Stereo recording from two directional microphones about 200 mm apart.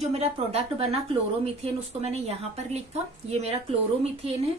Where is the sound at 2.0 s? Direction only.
30° right (ahead or behind).